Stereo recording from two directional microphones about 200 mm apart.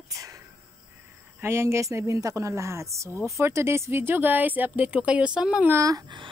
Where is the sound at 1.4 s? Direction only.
15° right (ahead or behind).